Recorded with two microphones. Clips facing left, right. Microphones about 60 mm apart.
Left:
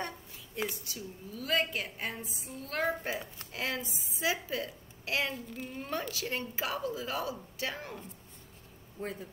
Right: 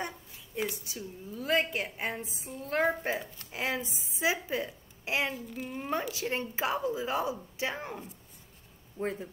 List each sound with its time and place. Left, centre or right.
0.8 s a woman's voice: right
5.3 s child singing: centre
5.8 s a woman's voice: right
9.0 s a woman's voice: right